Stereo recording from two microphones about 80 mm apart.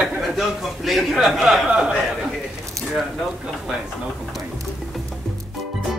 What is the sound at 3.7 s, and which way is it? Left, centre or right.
Speech, centre.